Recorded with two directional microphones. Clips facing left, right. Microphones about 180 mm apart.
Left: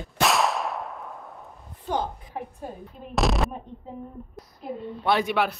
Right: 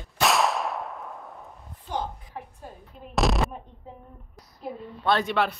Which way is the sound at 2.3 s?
15° left (ahead or behind).